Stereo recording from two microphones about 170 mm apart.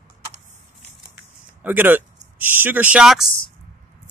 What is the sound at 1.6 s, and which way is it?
Speech, 10° right (ahead or behind).